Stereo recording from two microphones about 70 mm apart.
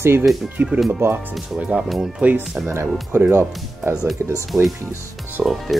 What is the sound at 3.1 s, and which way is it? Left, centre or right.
Speech, right.